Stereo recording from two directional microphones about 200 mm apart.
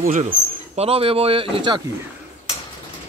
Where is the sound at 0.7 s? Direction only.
30° right (ahead or behind).